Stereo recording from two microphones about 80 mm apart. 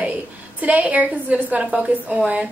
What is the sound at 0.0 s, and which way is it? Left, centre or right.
A woman's voice, centre.